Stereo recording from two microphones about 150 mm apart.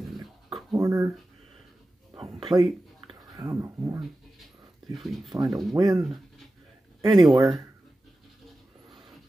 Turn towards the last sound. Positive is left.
turn(degrees=0)  # may be behind; listen again after turning